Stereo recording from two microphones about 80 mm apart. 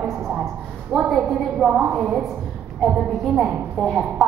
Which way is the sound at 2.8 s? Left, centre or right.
Centre.